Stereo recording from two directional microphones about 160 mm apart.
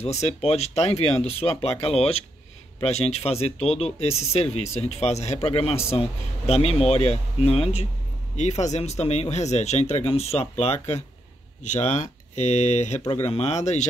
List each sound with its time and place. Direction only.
0.0 s speech: 40° left (ahead or behind)